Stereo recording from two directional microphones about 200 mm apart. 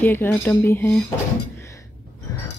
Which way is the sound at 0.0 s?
10° left (ahead or behind).